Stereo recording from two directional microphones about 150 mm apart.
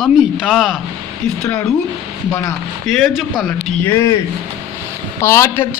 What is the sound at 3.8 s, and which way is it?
Speech, 15° left (ahead or behind).